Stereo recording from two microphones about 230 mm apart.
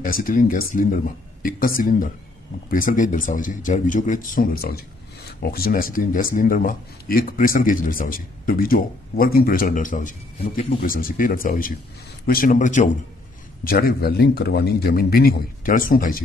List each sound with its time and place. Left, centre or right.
0.0 s a man's voice: left
10.8 s a man's voice: left